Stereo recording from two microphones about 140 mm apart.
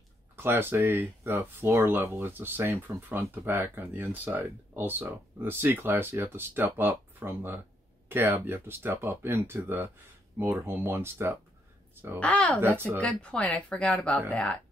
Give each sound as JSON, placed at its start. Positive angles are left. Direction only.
{"t": 0.4, "sound": "speech", "side_deg": -15}
{"t": 12.2, "sound": "speech", "side_deg": 10}
{"t": 12.6, "sound": "speech", "side_deg": -15}
{"t": 13.0, "sound": "speech", "side_deg": 10}